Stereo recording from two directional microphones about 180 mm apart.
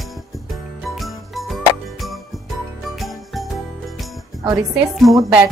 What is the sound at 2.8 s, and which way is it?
Jingle bell, centre (ahead or behind).